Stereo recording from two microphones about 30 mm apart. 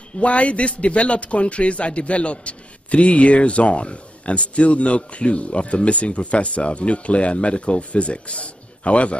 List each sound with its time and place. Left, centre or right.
0.2 s a man's voice: left